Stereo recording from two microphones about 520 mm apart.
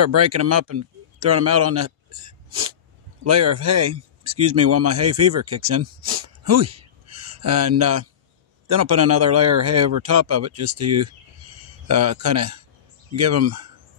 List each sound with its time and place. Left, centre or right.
0.0 s speech: right
3.3 s speech: right